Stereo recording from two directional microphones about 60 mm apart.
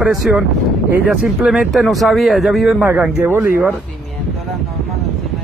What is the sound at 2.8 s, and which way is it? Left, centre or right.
Speech, right.